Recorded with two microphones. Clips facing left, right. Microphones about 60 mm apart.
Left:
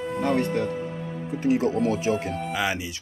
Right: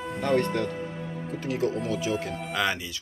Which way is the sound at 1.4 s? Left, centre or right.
Left.